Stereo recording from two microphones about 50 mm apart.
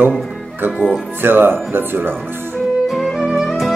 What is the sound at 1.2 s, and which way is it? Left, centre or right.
Speech, right.